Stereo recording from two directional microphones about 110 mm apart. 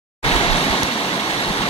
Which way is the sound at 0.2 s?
60° left (ahead or behind).